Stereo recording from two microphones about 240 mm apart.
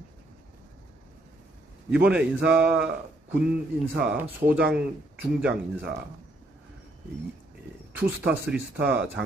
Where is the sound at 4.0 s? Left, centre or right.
Centre.